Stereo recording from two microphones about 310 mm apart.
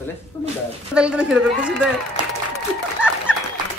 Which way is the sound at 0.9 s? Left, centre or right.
Centre.